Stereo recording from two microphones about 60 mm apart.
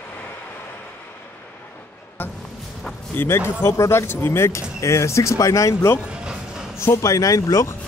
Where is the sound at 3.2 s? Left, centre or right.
Left.